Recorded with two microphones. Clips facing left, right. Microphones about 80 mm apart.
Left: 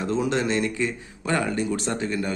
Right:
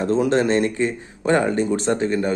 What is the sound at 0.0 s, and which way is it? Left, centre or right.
A man's voice, right.